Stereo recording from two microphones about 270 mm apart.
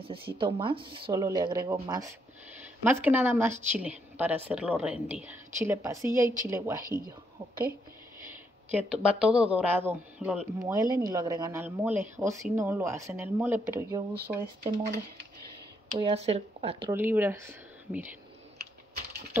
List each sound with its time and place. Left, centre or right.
0.4 s a woman's voice: centre
8.7 s a woman's voice: centre
14.1 s speech: right
16.0 s speech: right
16.9 s speech: centre